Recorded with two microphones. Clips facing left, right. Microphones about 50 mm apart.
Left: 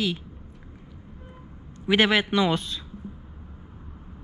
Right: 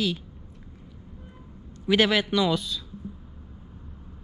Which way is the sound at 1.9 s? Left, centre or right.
Centre.